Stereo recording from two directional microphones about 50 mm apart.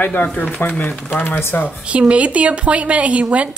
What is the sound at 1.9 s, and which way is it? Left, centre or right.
A woman's voice, right.